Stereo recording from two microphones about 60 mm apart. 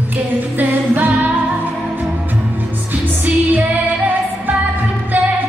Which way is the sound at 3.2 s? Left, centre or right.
Right.